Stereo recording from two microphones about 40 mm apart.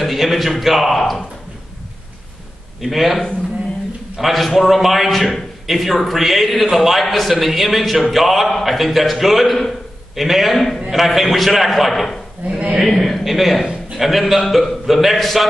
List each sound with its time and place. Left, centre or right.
0.0 s a man's voice: centre
2.8 s a man's voice: centre
12.4 s a sound: right
12.8 s a man's voice: centre